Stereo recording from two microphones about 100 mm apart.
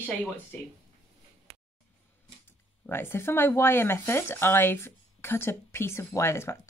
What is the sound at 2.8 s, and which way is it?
Speech, 25° left (ahead or behind).